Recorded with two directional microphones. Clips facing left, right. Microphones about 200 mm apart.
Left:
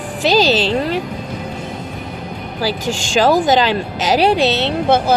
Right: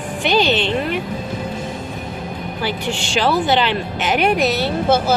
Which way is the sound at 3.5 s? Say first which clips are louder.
Left 3 dB; 40° left (ahead or behind).